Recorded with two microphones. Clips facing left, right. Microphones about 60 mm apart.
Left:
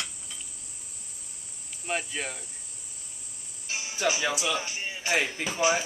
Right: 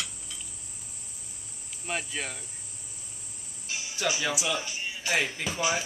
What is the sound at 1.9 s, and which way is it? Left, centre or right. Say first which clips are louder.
Cricket: left 2 dB; centre.